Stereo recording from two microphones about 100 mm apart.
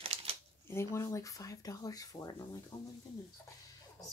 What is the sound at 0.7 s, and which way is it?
Speech, 30° left (ahead or behind).